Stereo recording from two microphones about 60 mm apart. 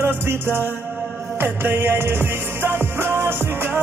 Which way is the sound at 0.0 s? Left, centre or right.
Right.